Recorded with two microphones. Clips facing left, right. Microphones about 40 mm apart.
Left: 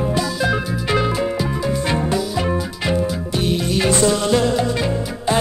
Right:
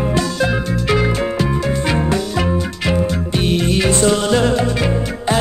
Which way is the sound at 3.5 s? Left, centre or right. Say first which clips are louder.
Right 4 dB; right.